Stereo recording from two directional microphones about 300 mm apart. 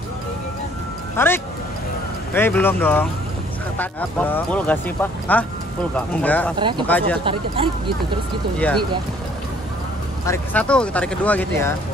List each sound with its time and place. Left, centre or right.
1.1 s speech: centre
7.2 s speech: centre
8.5 s speech: centre
10.2 s speech: centre